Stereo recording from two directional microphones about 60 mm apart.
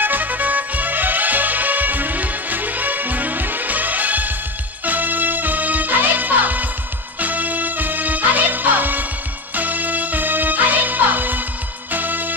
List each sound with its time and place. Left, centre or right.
0.0 s music: right